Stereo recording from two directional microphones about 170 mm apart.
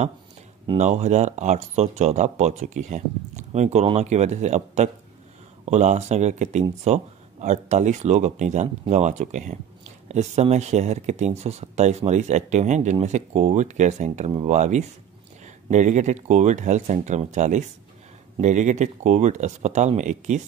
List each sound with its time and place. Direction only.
0.7 s speech: 40° right (ahead or behind)